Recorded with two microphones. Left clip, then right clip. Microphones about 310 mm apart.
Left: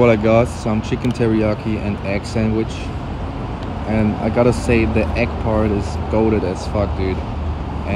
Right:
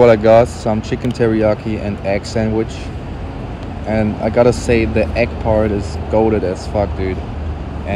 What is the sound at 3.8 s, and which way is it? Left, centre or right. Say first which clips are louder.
Speech: right 3 dB; centre.